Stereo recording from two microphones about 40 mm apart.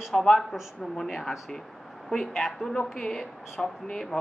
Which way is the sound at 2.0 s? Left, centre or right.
Centre.